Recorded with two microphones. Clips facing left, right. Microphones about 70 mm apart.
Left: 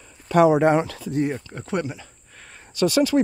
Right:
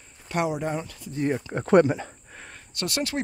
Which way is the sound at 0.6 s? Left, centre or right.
Left.